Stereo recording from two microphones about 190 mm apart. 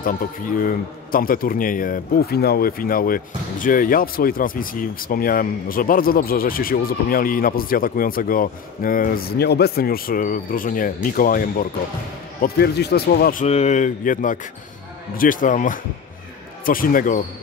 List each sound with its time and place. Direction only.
0.6 s a man's voice: 50° left (ahead or behind)
13.5 s a man's voice: 35° left (ahead or behind)